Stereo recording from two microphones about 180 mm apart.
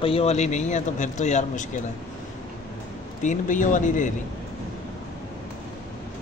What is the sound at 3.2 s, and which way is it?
Speech, 45° left (ahead or behind).